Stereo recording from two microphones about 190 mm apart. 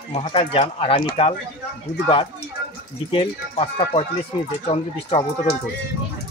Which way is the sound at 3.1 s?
30° left (ahead or behind).